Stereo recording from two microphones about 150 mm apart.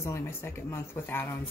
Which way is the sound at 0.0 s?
20° left (ahead or behind).